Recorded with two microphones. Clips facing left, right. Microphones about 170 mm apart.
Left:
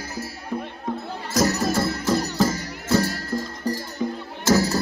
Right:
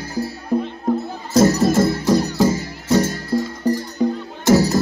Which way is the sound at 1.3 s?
25° right (ahead or behind).